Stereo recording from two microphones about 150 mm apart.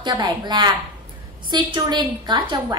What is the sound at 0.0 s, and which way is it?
A woman's voice, 30° right (ahead or behind).